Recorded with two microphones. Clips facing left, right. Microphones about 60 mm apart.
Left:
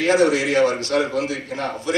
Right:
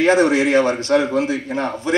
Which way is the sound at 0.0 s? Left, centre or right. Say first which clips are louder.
Right 3 dB; right.